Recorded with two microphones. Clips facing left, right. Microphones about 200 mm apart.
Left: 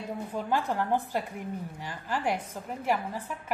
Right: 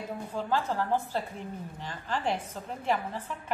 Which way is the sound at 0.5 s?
15° left (ahead or behind).